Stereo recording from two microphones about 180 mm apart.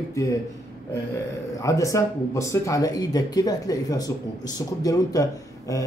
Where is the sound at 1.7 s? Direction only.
20° left (ahead or behind).